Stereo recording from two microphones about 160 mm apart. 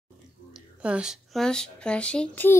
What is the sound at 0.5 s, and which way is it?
A child's voice, 5° right (ahead or behind).